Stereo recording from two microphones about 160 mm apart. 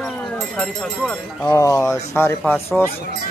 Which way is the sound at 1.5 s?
20° left (ahead or behind).